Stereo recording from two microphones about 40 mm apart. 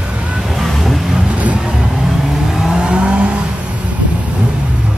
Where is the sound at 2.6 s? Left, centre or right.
Centre.